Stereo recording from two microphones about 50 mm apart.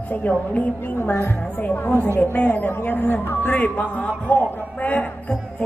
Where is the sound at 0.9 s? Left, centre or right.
Left.